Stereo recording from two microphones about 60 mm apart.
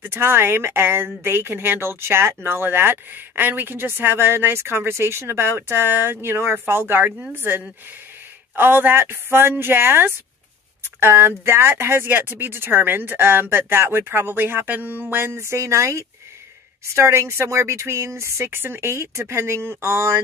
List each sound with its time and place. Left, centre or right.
0.0 s a woman's voice: right